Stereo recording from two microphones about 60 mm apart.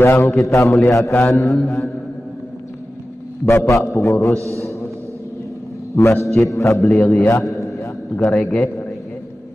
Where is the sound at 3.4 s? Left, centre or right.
Left.